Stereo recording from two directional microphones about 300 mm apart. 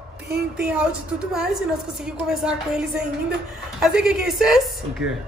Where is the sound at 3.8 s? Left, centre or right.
Centre.